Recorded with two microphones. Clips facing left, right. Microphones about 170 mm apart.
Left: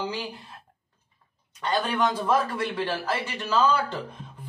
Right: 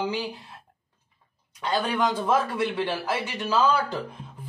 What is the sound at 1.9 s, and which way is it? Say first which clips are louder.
A man's voice: even; 15° right (ahead or behind).